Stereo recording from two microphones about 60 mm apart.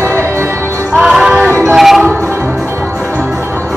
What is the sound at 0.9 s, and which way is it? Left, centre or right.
Music, centre.